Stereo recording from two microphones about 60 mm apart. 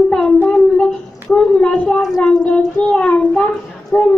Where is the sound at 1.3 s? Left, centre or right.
Centre.